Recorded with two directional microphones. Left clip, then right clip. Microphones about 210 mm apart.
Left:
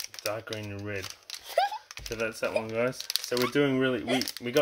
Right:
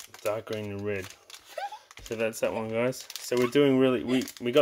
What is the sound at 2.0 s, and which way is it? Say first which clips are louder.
Speech: right 3 dB; 35° right (ahead or behind).